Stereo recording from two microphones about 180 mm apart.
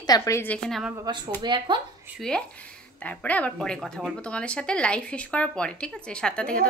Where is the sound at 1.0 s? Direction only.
20° right (ahead or behind).